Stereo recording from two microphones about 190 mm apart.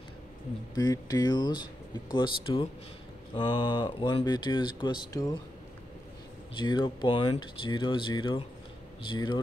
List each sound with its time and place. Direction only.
0.7 s speech: 20° left (ahead or behind)
6.5 s speech: 25° left (ahead or behind)